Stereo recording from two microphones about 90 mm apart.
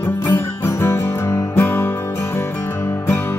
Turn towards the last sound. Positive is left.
turn(degrees=25)  # may be behind; listen again after turning